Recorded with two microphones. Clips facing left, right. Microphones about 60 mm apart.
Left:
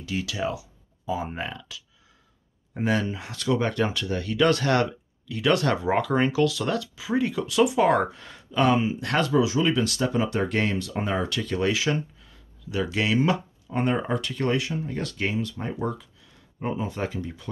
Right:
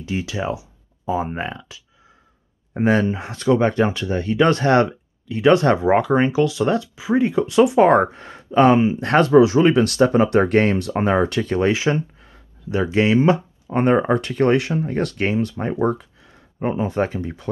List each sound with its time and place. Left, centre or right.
0.0 s speech: right